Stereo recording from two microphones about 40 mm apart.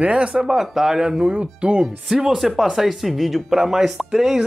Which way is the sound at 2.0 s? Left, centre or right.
Centre.